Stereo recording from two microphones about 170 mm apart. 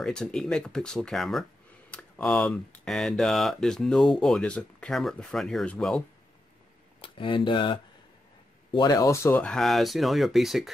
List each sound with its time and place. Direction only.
0.0 s speech: 5° left (ahead or behind)
7.0 s speech: 30° left (ahead or behind)
9.4 s speech: 5° left (ahead or behind)